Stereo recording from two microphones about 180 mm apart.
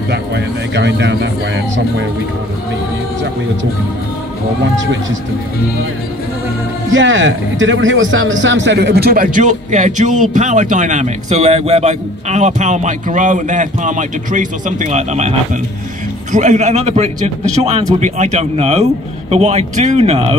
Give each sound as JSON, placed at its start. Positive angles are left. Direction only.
{"t": 0.1, "sound": "speech", "side_deg": -70}
{"t": 6.9, "sound": "a man's voice", "side_deg": -90}